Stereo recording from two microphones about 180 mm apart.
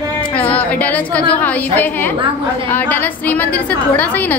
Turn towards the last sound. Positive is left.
turn(degrees=10)  # may be behind; listen again after turning